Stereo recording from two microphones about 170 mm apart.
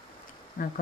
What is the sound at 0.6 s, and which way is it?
Speech, 55° left (ahead or behind).